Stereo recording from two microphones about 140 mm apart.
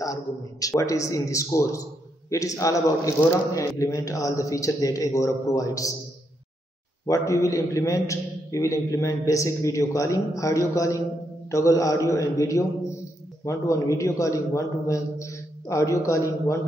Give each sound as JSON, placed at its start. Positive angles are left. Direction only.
{"t": 0.0, "sound": "a man's voice", "side_deg": 25}
{"t": 7.1, "sound": "a man's voice", "side_deg": 20}